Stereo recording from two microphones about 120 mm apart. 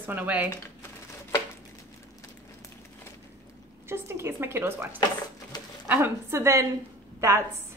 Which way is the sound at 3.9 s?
20° right (ahead or behind).